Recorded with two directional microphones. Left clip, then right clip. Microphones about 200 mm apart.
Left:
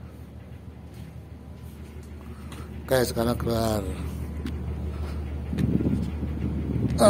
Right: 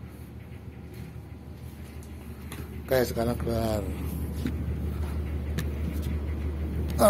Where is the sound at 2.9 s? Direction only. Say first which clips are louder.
Left 2 dB; 30° left (ahead or behind).